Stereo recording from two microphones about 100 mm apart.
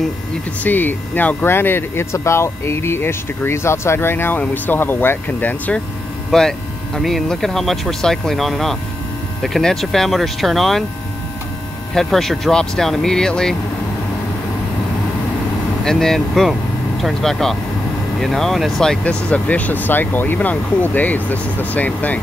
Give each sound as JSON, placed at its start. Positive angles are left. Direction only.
{"t": 0.7, "sound": "speech", "side_deg": 20}
{"t": 6.3, "sound": "speech", "side_deg": 5}
{"t": 11.9, "sound": "speech", "side_deg": 5}
{"t": 15.8, "sound": "speech", "side_deg": 5}